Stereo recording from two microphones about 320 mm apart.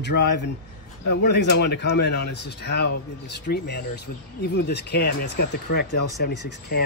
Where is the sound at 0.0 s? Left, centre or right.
Left.